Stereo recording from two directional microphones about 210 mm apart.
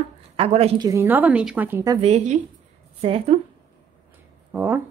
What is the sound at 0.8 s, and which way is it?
Speech, 10° right (ahead or behind).